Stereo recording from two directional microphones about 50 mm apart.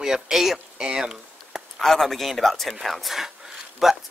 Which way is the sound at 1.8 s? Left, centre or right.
Centre.